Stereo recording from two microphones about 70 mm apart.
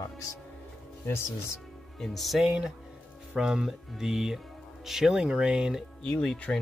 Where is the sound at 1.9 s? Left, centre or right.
Centre.